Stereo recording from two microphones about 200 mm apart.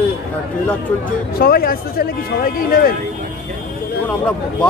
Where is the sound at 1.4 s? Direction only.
50° left (ahead or behind).